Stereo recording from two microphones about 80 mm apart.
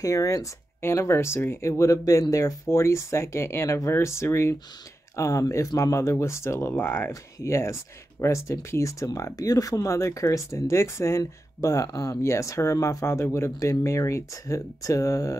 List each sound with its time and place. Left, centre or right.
0.0 s speech: left